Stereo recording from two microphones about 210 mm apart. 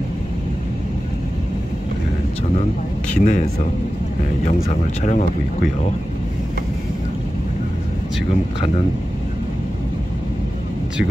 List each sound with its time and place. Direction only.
3.1 s speech: 35° left (ahead or behind)
4.6 s speech: 35° left (ahead or behind)